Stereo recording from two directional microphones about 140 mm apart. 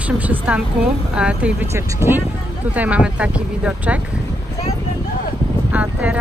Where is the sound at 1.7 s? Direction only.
20° right (ahead or behind).